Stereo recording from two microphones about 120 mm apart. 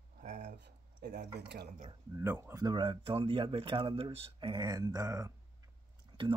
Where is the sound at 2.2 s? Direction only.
20° right (ahead or behind).